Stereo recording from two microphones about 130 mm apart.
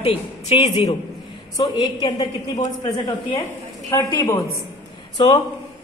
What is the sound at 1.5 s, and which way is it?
Speech, 30° left (ahead or behind).